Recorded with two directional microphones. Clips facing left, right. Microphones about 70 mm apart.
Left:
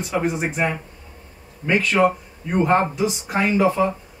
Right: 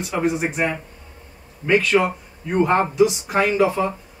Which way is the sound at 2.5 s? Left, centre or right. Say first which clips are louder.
Even; centre.